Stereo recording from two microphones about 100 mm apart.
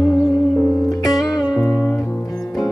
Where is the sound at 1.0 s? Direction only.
Centre (ahead or behind).